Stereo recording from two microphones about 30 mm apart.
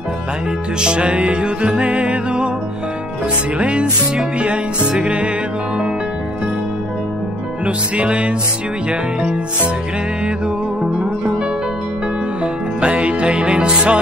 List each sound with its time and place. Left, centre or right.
0.7 s music: right
3.5 s music: right
7.6 s music: right
10.9 s music: right
12.8 s music: right